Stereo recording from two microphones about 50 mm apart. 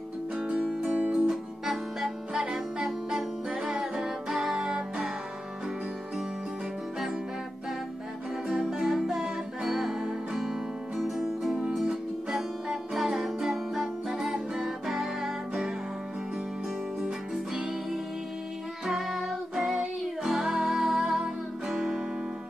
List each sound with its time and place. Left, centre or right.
0.4 s music: centre
1.1 s music: centre
8.5 s music: centre
11.0 s music: centre
18.9 s music: centre